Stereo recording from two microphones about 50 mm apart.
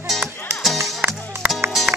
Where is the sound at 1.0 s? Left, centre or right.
Right.